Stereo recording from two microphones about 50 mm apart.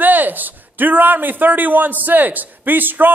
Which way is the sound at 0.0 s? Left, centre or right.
Right.